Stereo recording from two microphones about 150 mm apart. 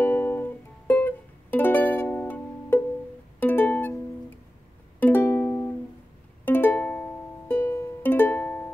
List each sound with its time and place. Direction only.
0.0 s music: 15° left (ahead or behind)
5.0 s music: 15° left (ahead or behind)